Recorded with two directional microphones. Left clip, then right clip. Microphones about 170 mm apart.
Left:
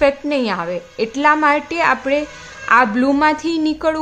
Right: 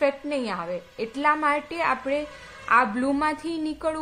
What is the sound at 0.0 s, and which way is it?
A woman's voice, 25° left (ahead or behind).